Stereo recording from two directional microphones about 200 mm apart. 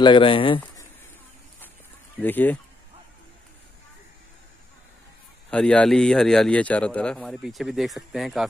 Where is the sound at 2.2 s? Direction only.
10° left (ahead or behind).